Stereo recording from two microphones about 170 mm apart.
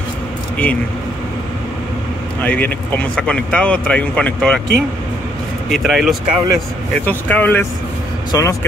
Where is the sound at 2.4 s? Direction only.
10° left (ahead or behind).